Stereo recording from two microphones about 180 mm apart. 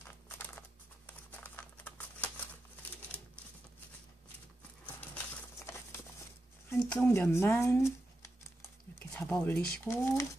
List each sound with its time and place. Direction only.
0.0 s computer keyboard: 10° left (ahead or behind)
5.6 s a sound: 15° left (ahead or behind)
6.8 s speech: 5° left (ahead or behind)